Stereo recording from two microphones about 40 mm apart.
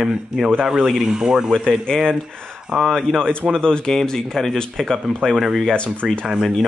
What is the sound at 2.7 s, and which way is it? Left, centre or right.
Speech, centre.